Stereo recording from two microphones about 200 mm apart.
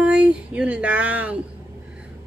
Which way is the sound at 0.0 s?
5° right (ahead or behind).